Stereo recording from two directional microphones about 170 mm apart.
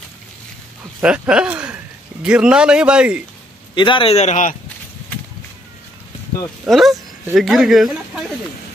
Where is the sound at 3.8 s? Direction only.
30° left (ahead or behind).